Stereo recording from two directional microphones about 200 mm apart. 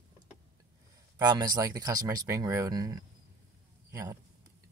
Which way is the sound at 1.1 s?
20° right (ahead or behind).